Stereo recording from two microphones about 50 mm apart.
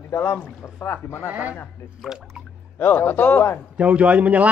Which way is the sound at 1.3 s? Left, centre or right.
Right.